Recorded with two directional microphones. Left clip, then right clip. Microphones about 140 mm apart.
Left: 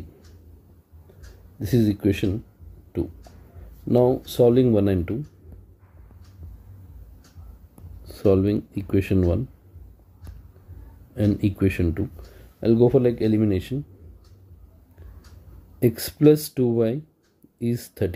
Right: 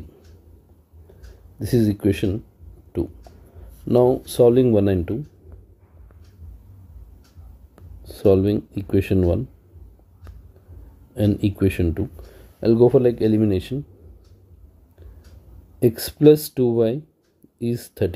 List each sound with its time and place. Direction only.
1.6 s speech: 25° right (ahead or behind)
8.0 s speech: 15° right (ahead or behind)
11.1 s speech: 15° right (ahead or behind)
15.8 s speech: 20° right (ahead or behind)